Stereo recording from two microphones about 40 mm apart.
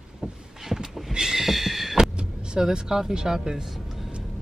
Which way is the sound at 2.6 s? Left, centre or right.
Centre.